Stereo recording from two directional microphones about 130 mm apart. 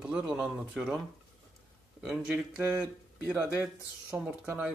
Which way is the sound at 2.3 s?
15° right (ahead or behind).